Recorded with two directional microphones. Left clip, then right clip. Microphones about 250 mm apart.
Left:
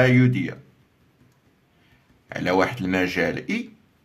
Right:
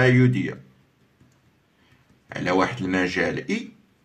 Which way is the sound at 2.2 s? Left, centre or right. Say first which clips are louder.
Left 1 dB; left.